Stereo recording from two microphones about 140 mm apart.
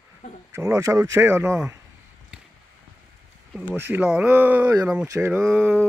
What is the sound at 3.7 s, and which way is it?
Speech, 15° right (ahead or behind).